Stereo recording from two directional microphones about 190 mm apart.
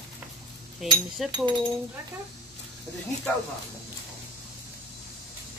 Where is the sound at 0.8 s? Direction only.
Centre (ahead or behind).